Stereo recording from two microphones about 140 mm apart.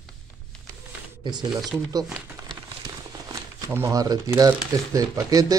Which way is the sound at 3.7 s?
20° right (ahead or behind).